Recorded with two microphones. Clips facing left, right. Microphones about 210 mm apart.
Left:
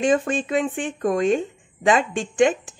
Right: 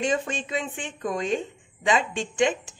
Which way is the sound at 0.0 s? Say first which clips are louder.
Left 6 dB; 50° left (ahead or behind).